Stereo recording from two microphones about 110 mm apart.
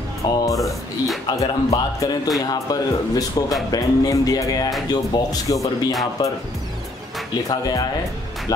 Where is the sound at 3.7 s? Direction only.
30° left (ahead or behind).